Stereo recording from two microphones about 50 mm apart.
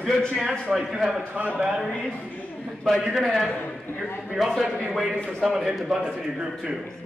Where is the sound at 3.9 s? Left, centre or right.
Left.